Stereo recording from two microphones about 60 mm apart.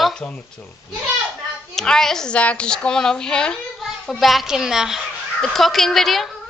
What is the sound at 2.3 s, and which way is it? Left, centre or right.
A woman's voice, left.